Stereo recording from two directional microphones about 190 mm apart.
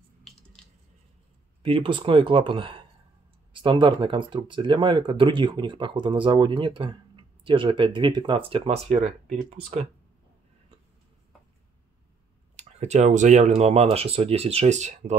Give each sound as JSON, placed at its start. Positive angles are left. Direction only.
{"t": 1.6, "sound": "speech", "side_deg": -25}
{"t": 12.5, "sound": "speech", "side_deg": -35}